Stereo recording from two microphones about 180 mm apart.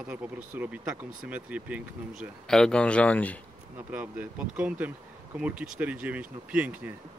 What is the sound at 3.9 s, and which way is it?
Speech, 10° right (ahead or behind).